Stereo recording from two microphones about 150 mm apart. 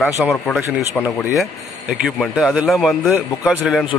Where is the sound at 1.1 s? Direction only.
15° left (ahead or behind).